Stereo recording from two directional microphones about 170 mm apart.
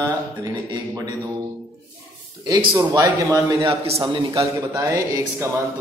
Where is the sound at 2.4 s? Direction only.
25° right (ahead or behind).